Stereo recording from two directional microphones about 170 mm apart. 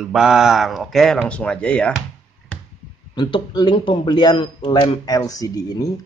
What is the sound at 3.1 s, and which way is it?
A man's voice, 25° left (ahead or behind).